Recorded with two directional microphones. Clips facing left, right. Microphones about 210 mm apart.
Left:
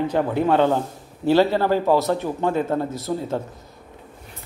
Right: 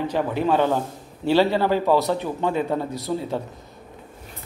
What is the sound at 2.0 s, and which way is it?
Speech, 15° right (ahead or behind).